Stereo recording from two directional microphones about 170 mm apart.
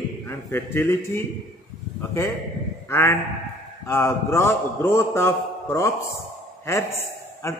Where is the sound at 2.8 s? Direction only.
15° left (ahead or behind).